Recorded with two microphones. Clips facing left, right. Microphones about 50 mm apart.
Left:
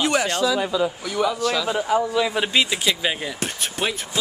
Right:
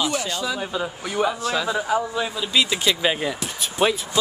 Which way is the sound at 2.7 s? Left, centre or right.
Centre.